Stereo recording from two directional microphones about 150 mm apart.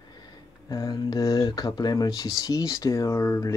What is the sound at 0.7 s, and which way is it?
Speech, 25° left (ahead or behind).